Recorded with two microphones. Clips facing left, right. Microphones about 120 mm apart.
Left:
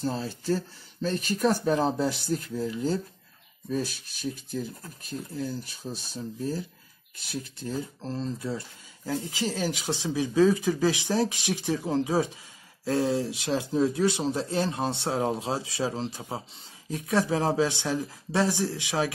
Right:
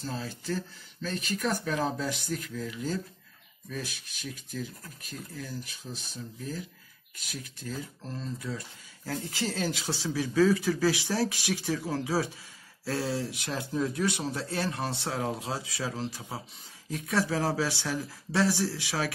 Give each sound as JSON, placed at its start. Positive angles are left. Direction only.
{"t": 0.0, "sound": "speech", "side_deg": 35}
{"t": 9.0, "sound": "speech", "side_deg": 15}